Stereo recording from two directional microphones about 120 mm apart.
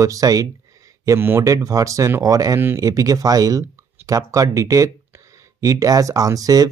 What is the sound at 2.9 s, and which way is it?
Speech, 30° right (ahead or behind).